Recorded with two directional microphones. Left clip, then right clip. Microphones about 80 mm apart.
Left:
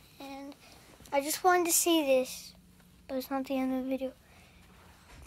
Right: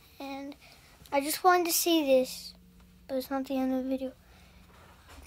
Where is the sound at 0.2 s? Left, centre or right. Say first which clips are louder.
Right 4 dB; right.